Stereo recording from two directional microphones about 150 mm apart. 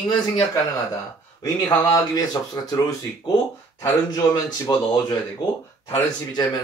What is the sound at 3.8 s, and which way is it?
A man's voice, 25° left (ahead or behind).